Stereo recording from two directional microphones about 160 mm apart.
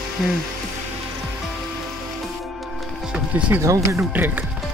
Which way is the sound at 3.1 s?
10° right (ahead or behind).